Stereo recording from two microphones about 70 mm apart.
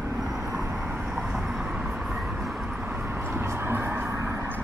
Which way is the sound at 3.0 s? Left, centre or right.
Right.